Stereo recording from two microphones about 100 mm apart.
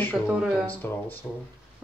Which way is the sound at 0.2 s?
5° right (ahead or behind).